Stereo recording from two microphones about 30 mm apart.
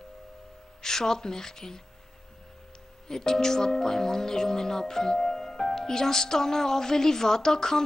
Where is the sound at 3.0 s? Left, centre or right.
Centre.